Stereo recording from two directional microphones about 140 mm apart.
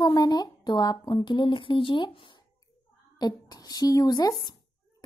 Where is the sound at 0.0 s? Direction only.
30° left (ahead or behind).